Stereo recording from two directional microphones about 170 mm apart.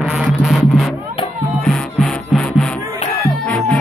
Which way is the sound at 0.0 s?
5° right (ahead or behind).